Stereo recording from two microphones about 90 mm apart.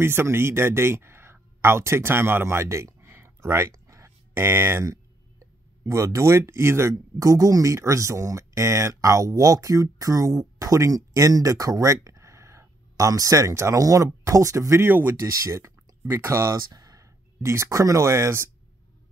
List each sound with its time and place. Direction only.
0.0 s speech: 25° right (ahead or behind)
15.1 s speech: 35° right (ahead or behind)